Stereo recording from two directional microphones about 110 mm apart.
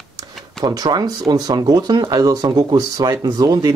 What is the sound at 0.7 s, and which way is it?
Speech, 40° right (ahead or behind).